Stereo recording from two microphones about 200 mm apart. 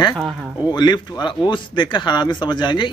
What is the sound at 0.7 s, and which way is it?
Speech, 20° left (ahead or behind).